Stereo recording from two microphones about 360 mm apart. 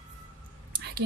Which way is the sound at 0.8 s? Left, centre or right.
Right.